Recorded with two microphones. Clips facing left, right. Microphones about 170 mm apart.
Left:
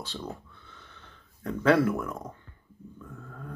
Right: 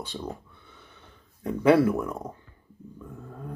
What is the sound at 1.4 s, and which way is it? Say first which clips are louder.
Speech: right 3 dB; 15° right (ahead or behind).